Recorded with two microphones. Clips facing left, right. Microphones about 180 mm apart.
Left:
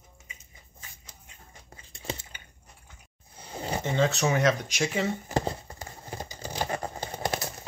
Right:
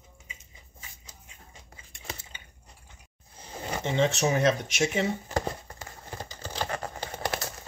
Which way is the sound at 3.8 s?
20° right (ahead or behind).